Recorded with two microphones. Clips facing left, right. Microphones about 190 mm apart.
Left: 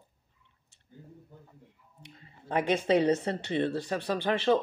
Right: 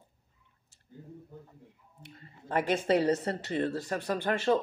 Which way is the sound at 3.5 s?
40° right (ahead or behind).